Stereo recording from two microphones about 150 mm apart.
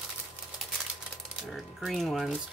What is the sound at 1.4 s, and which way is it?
Speech, centre (ahead or behind).